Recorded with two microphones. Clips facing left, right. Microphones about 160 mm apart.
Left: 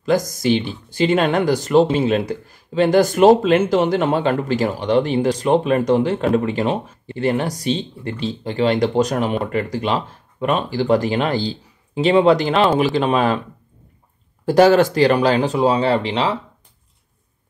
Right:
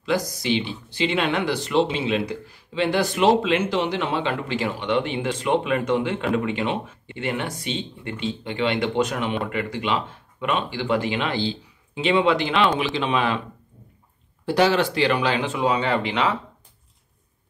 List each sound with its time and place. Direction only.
0.0 s speech: 45° left (ahead or behind)
14.4 s speech: 45° left (ahead or behind)